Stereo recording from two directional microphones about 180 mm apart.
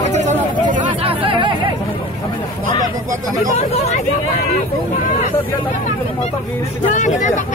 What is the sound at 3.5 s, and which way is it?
Hubbub, 40° left (ahead or behind).